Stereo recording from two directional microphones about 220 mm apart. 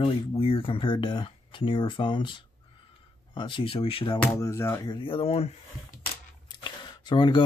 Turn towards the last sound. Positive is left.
turn(degrees=20)  # may be behind; listen again after turning